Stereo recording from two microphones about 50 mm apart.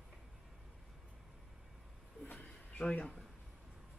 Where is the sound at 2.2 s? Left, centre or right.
Left.